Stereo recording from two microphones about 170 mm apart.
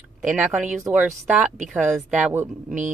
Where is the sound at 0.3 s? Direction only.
10° right (ahead or behind).